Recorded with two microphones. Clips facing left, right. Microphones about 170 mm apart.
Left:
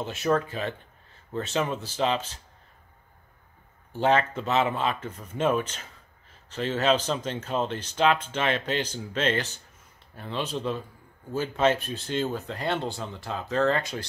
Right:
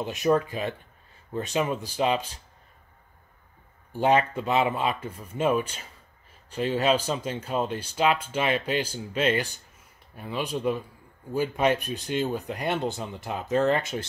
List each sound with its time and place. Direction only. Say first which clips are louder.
0.0 s speech: right 2 dB; 15° right (ahead or behind)
3.9 s speech: right 1 dB; 15° right (ahead or behind)